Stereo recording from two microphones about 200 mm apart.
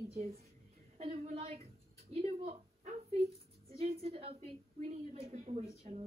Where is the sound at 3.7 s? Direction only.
30° right (ahead or behind).